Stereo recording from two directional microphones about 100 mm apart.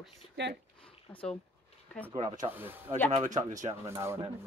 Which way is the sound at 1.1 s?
10° left (ahead or behind).